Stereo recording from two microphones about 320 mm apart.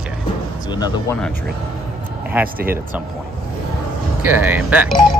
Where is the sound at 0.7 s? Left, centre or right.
Centre.